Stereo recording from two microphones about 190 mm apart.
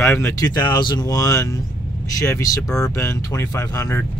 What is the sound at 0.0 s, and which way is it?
Speech, 15° left (ahead or behind).